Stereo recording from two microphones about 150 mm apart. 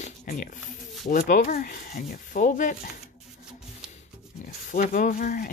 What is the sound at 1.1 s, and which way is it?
Rub, 65° left (ahead or behind).